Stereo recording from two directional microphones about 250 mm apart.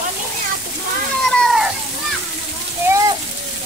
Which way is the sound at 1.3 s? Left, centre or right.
Centre.